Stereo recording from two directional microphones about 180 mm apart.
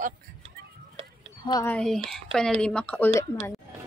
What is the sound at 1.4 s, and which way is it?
Speech, 20° left (ahead or behind).